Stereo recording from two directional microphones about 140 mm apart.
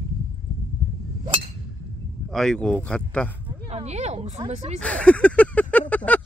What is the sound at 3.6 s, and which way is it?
Speech, 50° right (ahead or behind).